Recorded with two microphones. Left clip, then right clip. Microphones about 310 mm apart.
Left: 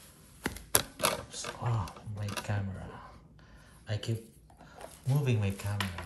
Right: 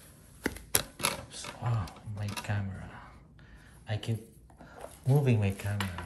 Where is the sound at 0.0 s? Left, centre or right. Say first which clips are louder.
Right 2 dB; centre.